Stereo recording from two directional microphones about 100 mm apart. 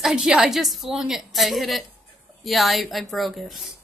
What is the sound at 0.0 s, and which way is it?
A woman's voice, 5° right (ahead or behind).